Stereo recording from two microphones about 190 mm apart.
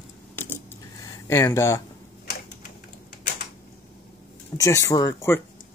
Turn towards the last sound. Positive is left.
turn(degrees=15)  # may be behind; listen again after turning